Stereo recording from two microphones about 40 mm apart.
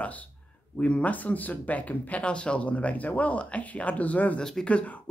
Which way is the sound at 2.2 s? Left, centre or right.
Left.